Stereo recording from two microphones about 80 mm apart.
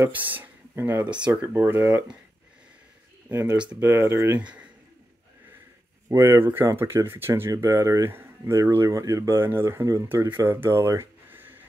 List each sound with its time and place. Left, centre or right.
0.2 s speech: right
3.3 s speech: right
4.4 s speech: centre
6.0 s speech: right
9.7 s speech: right
10.0 s speech: right
11.2 s a sound: right